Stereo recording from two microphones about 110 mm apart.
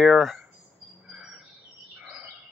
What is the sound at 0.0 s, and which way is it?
Speech, centre (ahead or behind).